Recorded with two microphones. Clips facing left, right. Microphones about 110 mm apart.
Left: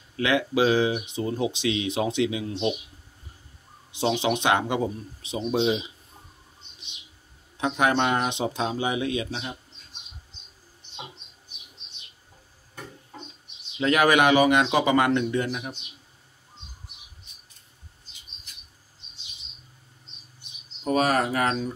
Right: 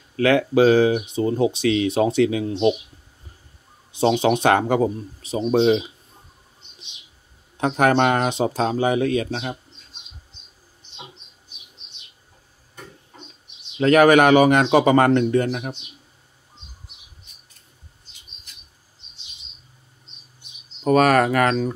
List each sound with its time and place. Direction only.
0.2 s speech: 40° right (ahead or behind)
4.2 s speech: 40° right (ahead or behind); by 5.9 s 55° right (ahead or behind)
7.5 s speech: 45° right (ahead or behind)
8.3 s speech: 40° right (ahead or behind)
13.7 s speech: 40° right (ahead or behind)
20.8 s speech: 70° right (ahead or behind)